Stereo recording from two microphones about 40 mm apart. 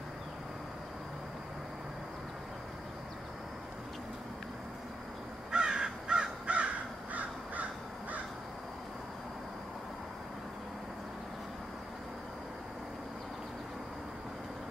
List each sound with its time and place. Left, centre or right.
5.5 s crow: centre; by 7.6 s right